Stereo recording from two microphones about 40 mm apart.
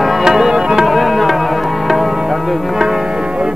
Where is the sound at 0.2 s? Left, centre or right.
Centre.